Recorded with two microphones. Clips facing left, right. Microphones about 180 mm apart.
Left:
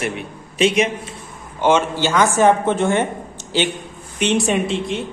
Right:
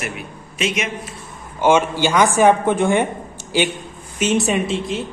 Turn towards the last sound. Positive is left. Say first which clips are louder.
# even
turn(degrees=0)  # may be behind; listen again after turning